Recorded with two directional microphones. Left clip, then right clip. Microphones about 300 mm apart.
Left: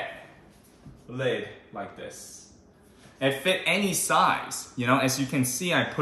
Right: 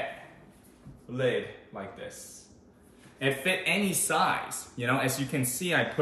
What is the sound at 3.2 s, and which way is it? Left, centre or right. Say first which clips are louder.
Speech: left 3 dB; centre.